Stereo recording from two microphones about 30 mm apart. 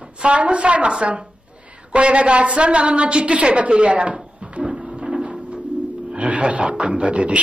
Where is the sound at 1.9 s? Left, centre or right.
Right.